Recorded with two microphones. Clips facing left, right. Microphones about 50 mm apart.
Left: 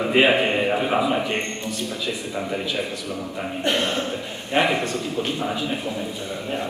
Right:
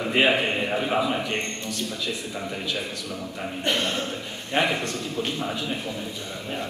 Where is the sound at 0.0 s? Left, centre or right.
Centre.